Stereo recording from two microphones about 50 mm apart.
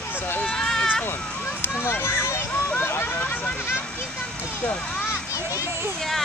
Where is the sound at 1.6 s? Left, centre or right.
Left.